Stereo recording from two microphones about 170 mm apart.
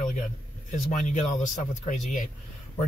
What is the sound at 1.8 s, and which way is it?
Speech, 50° left (ahead or behind).